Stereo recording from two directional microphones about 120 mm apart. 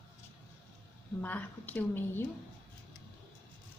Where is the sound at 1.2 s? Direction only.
15° left (ahead or behind).